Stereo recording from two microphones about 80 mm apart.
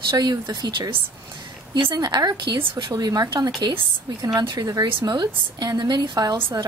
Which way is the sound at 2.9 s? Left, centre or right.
Right.